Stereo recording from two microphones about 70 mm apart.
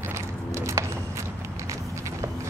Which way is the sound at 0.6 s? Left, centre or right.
Right.